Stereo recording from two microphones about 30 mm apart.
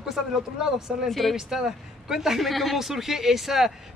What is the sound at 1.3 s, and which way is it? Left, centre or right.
Speech, centre.